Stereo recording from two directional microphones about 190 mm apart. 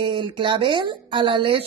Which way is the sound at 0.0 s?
25° right (ahead or behind).